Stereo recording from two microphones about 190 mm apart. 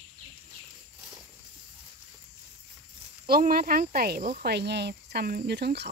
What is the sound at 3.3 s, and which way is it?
Speech, 50° right (ahead or behind).